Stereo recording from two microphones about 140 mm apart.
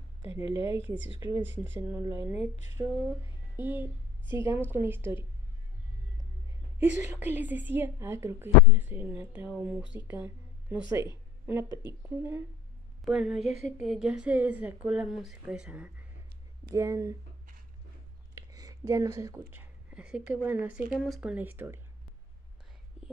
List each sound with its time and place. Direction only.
0.5 s a woman's voice: 40° left (ahead or behind)
1.2 s a woman's voice: 15° right (ahead or behind)
2.4 s a sound: 20° right (ahead or behind)
3.5 s a woman's voice: 15° right (ahead or behind)
6.8 s a woman's voice: 15° right (ahead or behind)
13.0 s a woman's voice: centre (ahead or behind)
16.7 s a sound: 20° right (ahead or behind)
18.3 s speech: 25° right (ahead or behind)